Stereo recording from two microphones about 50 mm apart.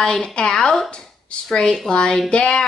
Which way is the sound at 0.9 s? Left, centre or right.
Left.